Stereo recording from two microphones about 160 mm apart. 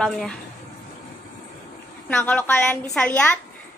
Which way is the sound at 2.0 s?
10° left (ahead or behind).